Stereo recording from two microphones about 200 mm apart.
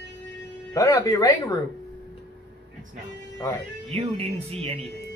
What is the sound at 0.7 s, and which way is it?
Speech, 15° left (ahead or behind).